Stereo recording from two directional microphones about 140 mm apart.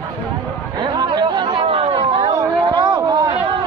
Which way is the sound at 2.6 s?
30° right (ahead or behind).